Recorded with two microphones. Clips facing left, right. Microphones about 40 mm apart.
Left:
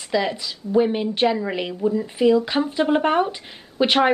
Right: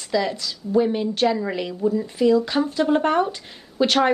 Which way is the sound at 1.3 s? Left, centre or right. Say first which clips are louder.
Even; centre.